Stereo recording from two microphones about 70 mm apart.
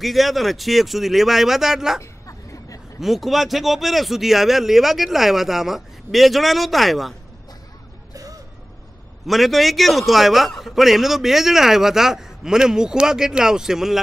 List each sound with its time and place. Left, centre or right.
0.0 s a man's voice: centre
2.0 s a sound: left
3.0 s a man's voice: centre
8.1 s music: right
9.2 s a man's voice: centre